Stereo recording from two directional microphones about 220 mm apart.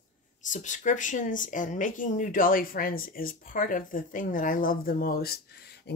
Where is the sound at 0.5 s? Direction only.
35° left (ahead or behind).